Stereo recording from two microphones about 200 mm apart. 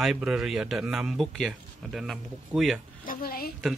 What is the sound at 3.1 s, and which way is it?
Speech, 45° left (ahead or behind).